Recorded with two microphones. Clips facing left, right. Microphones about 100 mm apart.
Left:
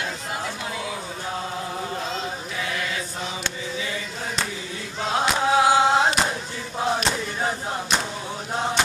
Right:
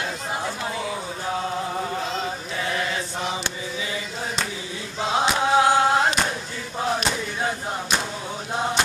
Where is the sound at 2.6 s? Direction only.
35° right (ahead or behind).